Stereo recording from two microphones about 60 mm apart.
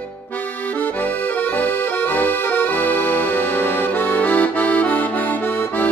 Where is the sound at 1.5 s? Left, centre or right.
Left.